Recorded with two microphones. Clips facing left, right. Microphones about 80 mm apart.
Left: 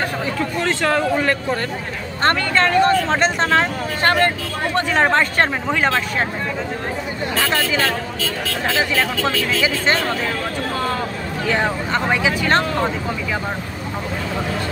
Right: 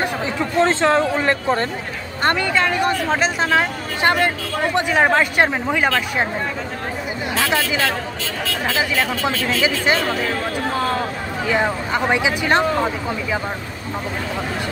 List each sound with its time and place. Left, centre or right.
0.0 s speech: right
2.2 s speech: centre
7.3 s speech: centre
9.3 s speech: right
11.4 s speech: centre